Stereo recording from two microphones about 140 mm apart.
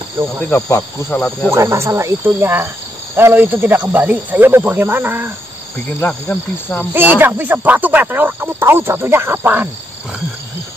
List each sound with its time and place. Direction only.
0.7 s speech: 10° left (ahead or behind)
1.5 s speech: 20° right (ahead or behind)
5.9 s speech: 10° left (ahead or behind)
6.9 s speech: 15° right (ahead or behind)